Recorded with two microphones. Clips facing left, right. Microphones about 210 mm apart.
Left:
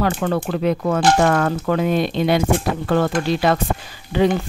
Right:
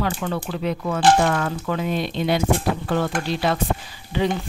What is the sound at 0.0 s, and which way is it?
Speech, 50° left (ahead or behind).